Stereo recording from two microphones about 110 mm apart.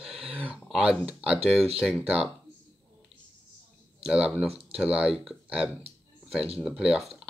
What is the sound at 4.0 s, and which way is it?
Speech, 10° right (ahead or behind).